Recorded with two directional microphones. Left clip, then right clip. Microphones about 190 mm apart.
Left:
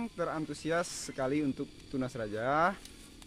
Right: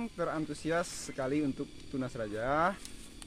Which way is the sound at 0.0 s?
45° left (ahead or behind).